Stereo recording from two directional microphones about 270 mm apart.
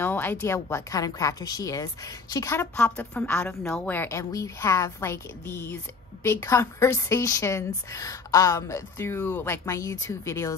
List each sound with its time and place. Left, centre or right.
0.0 s a woman's voice: centre